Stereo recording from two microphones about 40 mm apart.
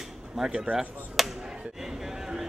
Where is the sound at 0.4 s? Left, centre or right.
Centre.